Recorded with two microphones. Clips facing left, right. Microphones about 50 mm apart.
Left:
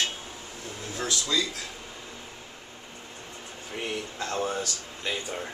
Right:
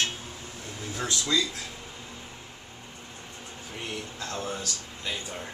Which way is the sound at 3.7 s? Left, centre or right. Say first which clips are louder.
Left 4 dB; centre.